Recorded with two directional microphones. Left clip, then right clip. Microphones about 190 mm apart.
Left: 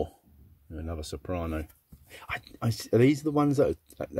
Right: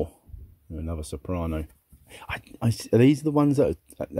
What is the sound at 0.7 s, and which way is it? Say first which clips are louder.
Speech: right 2 dB; 25° right (ahead or behind).